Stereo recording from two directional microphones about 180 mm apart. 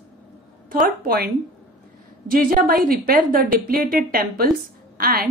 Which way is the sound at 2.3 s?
50° right (ahead or behind).